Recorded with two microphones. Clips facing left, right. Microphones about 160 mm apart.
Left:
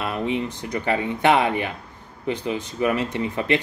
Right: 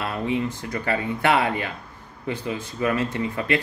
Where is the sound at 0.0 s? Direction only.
20° left (ahead or behind).